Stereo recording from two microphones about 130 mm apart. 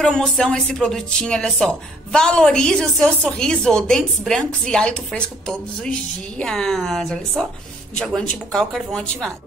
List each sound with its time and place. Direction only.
0.0 s speech: 5° left (ahead or behind)